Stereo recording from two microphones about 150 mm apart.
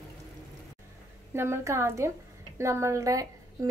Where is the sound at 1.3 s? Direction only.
15° right (ahead or behind).